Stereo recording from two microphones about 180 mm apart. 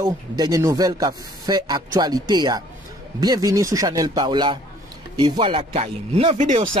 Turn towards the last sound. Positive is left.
turn(degrees=-40)  # may be behind; listen again after turning